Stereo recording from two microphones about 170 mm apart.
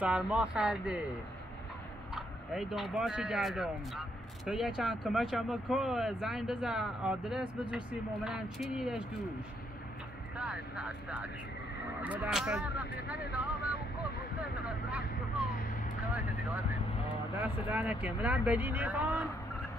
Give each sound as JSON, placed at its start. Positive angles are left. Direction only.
{"t": 0.0, "sound": "speech", "side_deg": -5}
{"t": 2.1, "sound": "speech", "side_deg": 0}
{"t": 10.3, "sound": "speech", "side_deg": -5}
{"t": 14.9, "sound": "vehicle", "side_deg": -5}
{"t": 17.4, "sound": "speech", "side_deg": -10}